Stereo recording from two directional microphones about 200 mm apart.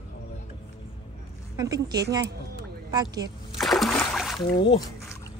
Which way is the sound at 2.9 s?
20° right (ahead or behind).